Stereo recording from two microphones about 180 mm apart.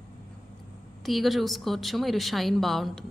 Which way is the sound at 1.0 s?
Centre (ahead or behind).